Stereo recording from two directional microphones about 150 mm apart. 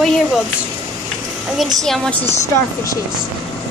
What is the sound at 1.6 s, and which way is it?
Speech, centre (ahead or behind).